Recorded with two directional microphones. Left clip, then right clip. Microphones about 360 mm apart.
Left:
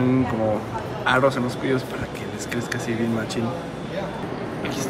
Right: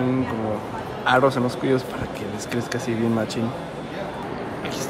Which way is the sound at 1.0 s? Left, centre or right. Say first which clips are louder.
Right 1 dB; centre.